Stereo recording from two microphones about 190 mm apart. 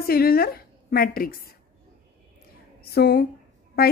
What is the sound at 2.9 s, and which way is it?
Speech, 55° left (ahead or behind).